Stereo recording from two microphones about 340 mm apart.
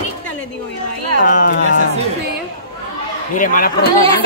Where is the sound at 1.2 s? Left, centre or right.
Left.